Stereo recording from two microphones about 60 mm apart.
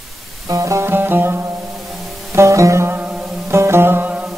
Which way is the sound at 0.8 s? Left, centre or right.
Right.